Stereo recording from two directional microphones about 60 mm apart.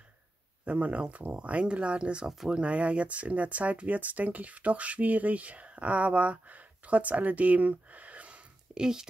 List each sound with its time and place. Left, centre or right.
0.7 s speech: right
2.2 s speech: centre
2.5 s speech: right